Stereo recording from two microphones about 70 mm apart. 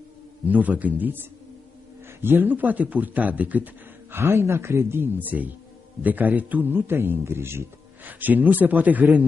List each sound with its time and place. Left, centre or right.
0.5 s a man's voice: right
4.2 s a man's voice: right
8.1 s a man's voice: right